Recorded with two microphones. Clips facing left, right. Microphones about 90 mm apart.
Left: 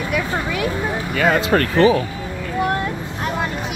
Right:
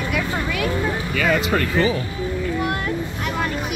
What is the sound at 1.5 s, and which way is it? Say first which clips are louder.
Speech: left 5 dB; 70° left (ahead or behind).